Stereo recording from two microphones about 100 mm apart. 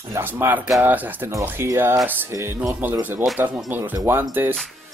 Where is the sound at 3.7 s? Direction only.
20° right (ahead or behind).